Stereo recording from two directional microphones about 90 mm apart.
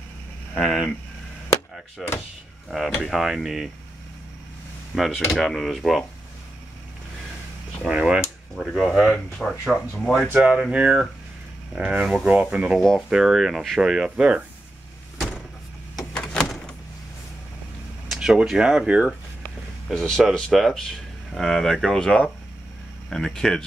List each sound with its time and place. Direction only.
0.6 s speech: 5° left (ahead or behind)
2.0 s speech: centre (ahead or behind)
4.9 s speech: centre (ahead or behind)
7.8 s speech: 5° right (ahead or behind)
10.3 s speech: 10° right (ahead or behind)
12.0 s speech: 5° left (ahead or behind)
12.3 s speech: 15° right (ahead or behind)
16.0 s door: 5° left (ahead or behind)
18.1 s speech: 5° right (ahead or behind)
19.9 s speech: 10° left (ahead or behind)